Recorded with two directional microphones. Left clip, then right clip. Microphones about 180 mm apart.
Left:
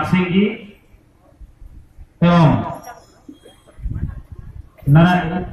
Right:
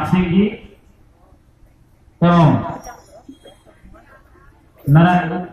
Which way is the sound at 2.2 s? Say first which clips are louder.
Right 1 dB; 35° left (ahead or behind).